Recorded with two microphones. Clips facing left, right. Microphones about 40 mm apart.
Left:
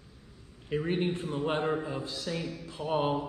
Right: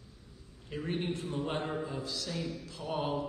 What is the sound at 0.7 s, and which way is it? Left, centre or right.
A man's voice, left.